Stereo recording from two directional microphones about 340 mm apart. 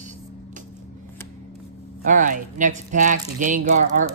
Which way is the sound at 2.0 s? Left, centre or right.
Right.